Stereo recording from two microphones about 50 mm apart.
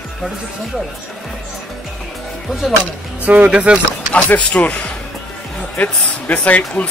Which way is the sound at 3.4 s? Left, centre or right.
Right.